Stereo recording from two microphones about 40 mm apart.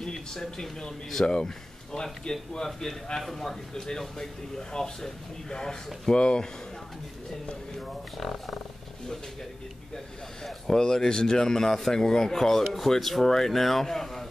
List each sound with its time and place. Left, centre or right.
0.0 s speech: centre
7.7 s speech: centre
10.8 s speech: centre